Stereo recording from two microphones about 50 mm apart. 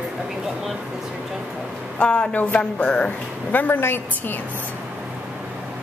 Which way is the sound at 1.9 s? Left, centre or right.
Left.